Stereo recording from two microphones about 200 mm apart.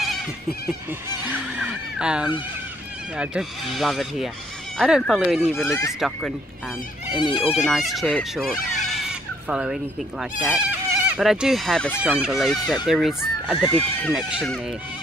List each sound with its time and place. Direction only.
1.6 s a sound: 5° right (ahead or behind)
3.2 s speech: centre (ahead or behind)
7.2 s speech: 25° left (ahead or behind)
7.5 s speech: centre (ahead or behind)